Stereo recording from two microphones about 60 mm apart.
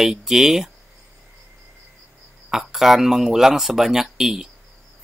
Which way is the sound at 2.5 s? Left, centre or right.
Centre.